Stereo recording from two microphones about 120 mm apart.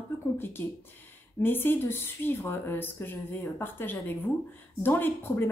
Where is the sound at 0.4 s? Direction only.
20° left (ahead or behind).